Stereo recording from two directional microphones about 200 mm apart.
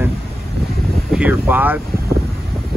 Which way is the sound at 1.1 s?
5° right (ahead or behind).